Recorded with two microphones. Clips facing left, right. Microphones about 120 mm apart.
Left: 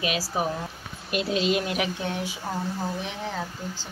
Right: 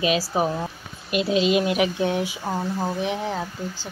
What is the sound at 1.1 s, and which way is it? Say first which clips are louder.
Speech: right 4 dB; 10° right (ahead or behind).